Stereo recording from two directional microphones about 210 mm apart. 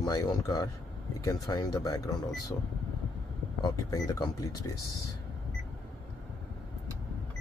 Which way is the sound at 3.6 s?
20° left (ahead or behind).